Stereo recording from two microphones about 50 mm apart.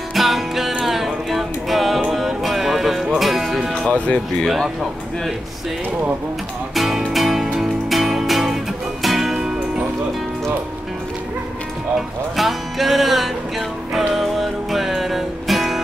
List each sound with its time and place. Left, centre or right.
0.1 s music: centre
3.9 s speech: left
6.7 s music: centre
12.4 s music: centre